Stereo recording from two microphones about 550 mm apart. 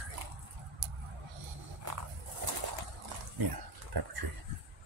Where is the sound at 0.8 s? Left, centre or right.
Right.